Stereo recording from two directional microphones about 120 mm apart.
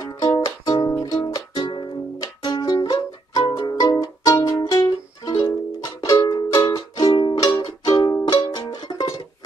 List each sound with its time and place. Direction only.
0.2 s music: 35° left (ahead or behind)